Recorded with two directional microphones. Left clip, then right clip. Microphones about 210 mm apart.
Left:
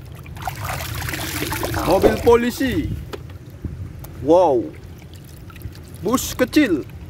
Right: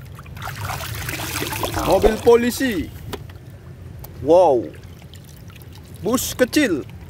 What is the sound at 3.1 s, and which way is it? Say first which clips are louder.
Boat: right 4 dB; 50° right (ahead or behind).